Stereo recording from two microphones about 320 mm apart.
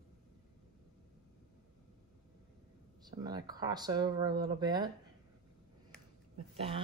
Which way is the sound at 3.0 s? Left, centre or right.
Centre.